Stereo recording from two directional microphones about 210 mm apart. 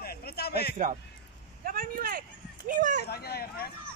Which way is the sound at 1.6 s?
45° right (ahead or behind).